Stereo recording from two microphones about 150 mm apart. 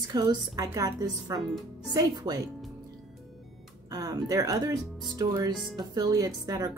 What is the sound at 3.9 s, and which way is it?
Speech, 25° right (ahead or behind).